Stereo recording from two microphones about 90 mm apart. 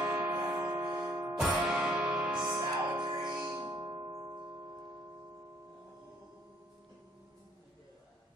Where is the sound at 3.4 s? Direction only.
25° right (ahead or behind).